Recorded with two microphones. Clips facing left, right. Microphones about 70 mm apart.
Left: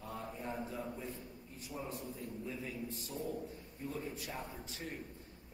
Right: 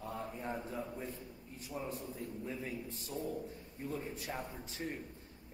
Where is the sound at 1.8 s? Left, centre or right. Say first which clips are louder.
Right 1 dB; right.